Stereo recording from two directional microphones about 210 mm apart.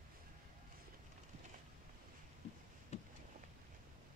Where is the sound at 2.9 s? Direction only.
30° left (ahead or behind).